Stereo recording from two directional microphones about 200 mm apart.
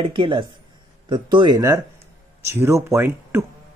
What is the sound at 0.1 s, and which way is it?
A man's voice, 25° right (ahead or behind).